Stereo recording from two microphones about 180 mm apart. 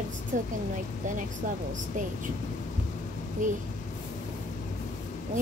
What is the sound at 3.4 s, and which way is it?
Speech, 45° right (ahead or behind).